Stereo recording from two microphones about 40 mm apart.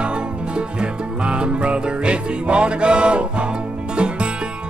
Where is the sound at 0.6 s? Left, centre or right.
Right.